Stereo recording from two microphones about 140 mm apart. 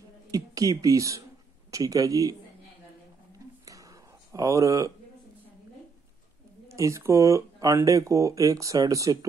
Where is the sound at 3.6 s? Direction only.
25° right (ahead or behind).